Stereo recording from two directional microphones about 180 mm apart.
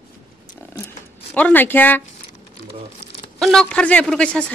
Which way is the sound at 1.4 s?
10° left (ahead or behind).